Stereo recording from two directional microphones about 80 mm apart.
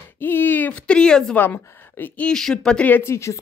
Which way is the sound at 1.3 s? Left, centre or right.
Left.